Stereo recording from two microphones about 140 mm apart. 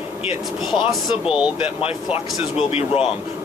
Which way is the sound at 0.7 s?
5° right (ahead or behind).